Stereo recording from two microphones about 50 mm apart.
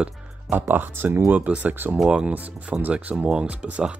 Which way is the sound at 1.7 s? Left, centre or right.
Right.